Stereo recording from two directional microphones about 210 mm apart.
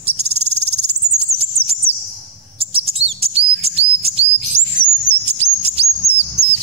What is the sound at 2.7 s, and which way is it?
Chirp, 25° right (ahead or behind).